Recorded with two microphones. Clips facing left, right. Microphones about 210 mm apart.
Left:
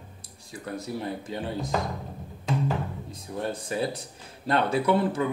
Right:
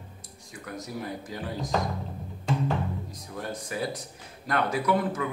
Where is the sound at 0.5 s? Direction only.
30° left (ahead or behind).